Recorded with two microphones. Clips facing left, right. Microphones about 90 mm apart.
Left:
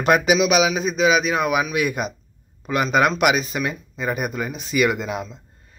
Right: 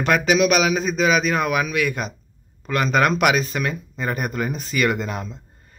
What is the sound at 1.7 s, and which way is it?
A man's voice, 15° left (ahead or behind).